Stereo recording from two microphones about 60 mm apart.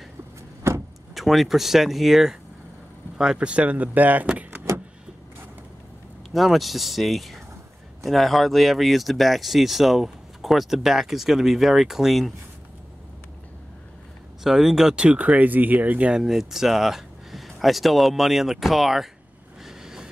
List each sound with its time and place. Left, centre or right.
0.7 s vehicle: right
1.1 s speech: centre
3.2 s speech: centre
6.3 s speech: centre
14.4 s speech: centre; by 16.1 s right
16.1 s speech: centre
19.6 s vehicle: centre